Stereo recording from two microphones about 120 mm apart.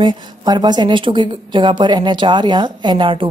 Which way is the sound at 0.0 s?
40° right (ahead or behind).